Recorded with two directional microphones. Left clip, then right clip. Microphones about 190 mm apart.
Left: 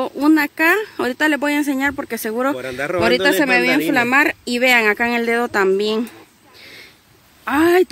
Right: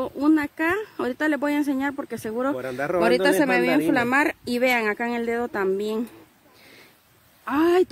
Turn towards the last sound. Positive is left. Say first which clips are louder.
# left 6 dB
turn(degrees=5)  # may be behind; listen again after turning